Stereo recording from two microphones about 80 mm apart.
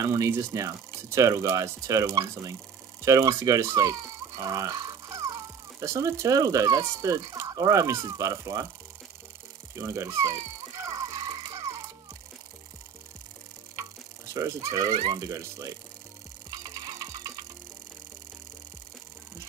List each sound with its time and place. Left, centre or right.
0.0 s speech: right
9.8 s music: right
13.7 s a sound: right
15.1 s speech: right
16.5 s music: right